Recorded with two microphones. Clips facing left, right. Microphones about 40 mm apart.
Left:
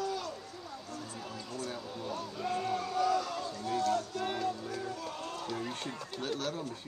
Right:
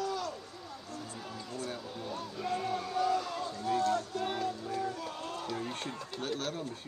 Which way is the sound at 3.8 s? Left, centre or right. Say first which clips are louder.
Left 1 dB; right.